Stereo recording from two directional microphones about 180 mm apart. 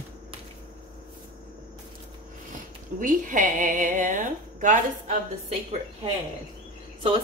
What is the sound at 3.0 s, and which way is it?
A woman's voice, 45° right (ahead or behind).